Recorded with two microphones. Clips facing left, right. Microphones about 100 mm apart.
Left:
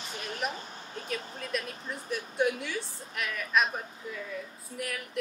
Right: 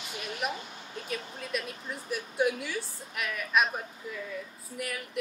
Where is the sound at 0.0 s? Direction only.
35° left (ahead or behind).